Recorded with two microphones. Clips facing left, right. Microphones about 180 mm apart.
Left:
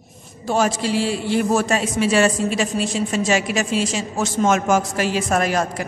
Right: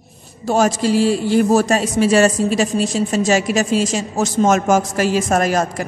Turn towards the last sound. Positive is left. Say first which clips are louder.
# right 3 dB
turn(degrees=-40)  # may be behind; listen again after turning